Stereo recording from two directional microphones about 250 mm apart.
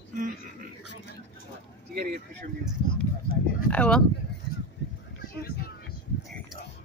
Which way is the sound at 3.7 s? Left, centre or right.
Centre.